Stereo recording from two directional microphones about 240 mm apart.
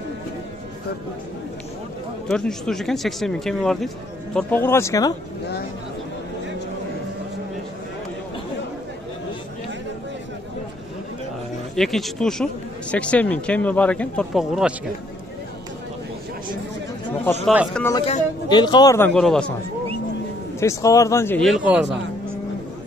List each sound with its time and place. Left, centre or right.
2.2 s speech: centre
11.7 s speech: centre
17.5 s speech: centre
18.0 s a man's voice: left; by 19.4 s centre
20.5 s speech: centre